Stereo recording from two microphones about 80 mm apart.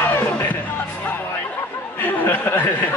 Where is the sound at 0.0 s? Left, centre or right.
Left.